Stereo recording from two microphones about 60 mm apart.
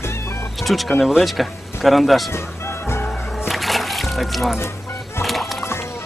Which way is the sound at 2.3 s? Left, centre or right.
Left.